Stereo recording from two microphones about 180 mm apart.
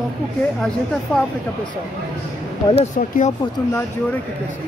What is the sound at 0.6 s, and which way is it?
Speech, 5° left (ahead or behind).